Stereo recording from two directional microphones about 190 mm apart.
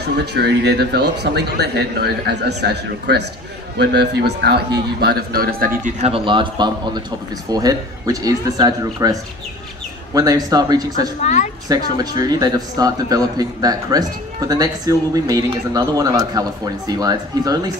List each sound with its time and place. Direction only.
0.0 s a man's voice: 60° right (ahead or behind)
5.9 s a man's voice: 30° right (ahead or behind)
10.1 s a man's voice: 20° right (ahead or behind)
11.0 s a woman's voice: 35° left (ahead or behind)
11.7 s a man's voice: 20° right (ahead or behind)